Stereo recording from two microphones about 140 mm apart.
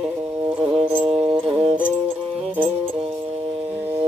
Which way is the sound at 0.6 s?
10° right (ahead or behind).